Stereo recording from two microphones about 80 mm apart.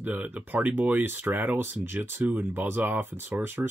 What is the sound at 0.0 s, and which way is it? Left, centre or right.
Speech, right.